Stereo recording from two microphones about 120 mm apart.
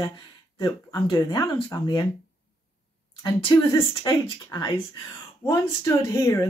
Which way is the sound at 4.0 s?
40° left (ahead or behind).